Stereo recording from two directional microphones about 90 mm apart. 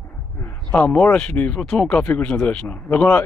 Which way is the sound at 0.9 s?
15° left (ahead or behind).